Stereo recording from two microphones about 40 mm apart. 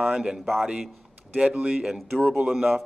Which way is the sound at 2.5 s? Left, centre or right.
Centre.